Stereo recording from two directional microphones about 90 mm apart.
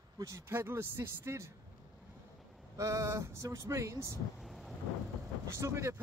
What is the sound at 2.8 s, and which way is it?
Speech, 35° right (ahead or behind).